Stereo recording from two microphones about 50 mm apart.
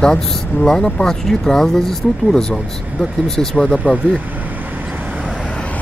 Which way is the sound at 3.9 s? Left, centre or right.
Right.